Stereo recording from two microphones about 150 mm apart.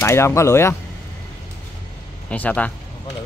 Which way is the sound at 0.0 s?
20° left (ahead or behind).